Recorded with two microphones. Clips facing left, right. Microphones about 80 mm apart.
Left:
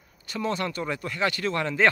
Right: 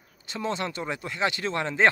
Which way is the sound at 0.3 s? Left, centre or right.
Right.